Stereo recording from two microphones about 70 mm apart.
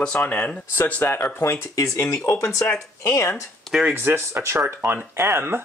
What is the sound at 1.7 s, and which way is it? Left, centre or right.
Speech, left.